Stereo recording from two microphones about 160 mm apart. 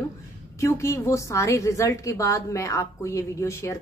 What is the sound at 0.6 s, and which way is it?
A woman's voice, 20° left (ahead or behind).